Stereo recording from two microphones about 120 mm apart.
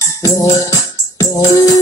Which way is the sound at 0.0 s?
30° left (ahead or behind).